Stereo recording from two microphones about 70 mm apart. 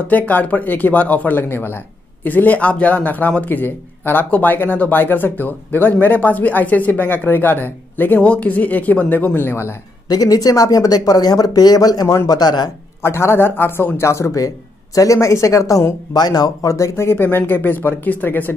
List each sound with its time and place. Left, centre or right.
0.1 s a man's voice: left
10.0 s speech: left
12.3 s speech: left
13.0 s speech: left
16.9 s a man's voice: left